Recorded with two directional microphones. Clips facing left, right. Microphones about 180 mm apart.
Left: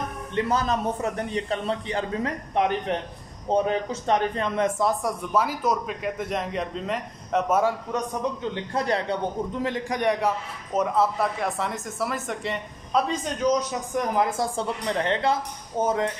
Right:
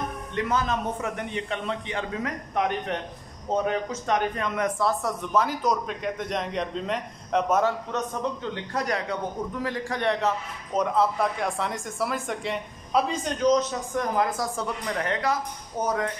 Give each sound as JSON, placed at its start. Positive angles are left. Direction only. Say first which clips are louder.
{"t": 0.5, "sound": "a man's voice", "louder": "left 1 dB", "side_deg": 35}
{"t": 8.7, "sound": "a man's voice", "louder": "left 3 dB", "side_deg": 30}